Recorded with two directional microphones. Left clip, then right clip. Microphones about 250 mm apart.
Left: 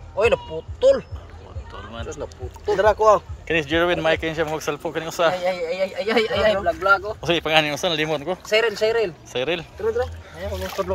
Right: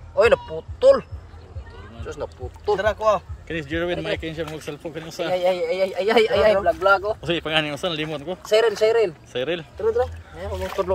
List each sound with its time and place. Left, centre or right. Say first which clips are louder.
0.2 s speech: right 2 dB; centre
2.0 s speech: right 1 dB; centre
3.0 s speech: left 4 dB; left
3.4 s speech: left 8 dB; centre
5.3 s speech: right 3 dB; right
7.2 s speech: left 4 dB; centre
8.4 s speech: right 3 dB; right
9.3 s speech: left 2 dB; centre